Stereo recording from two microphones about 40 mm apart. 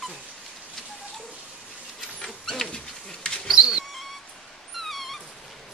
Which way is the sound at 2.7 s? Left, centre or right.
Centre.